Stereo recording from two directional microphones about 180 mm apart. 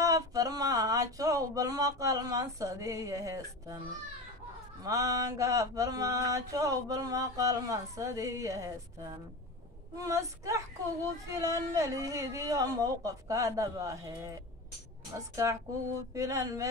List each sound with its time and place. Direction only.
0.0 s a sound: 20° right (ahead or behind)
4.8 s mantra: 20° right (ahead or behind)
9.9 s speech: 20° right (ahead or behind)